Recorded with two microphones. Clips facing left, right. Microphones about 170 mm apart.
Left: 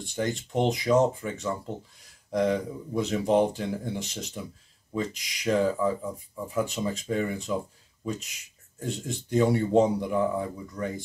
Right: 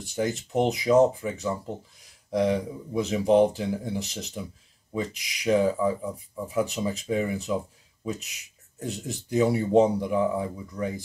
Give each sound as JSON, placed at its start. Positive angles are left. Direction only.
{"t": 0.0, "sound": "speech", "side_deg": -5}